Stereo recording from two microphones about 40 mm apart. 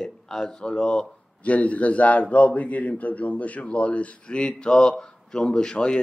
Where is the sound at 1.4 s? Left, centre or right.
Left.